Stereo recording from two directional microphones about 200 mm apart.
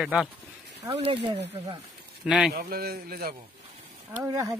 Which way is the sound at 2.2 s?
Centre (ahead or behind).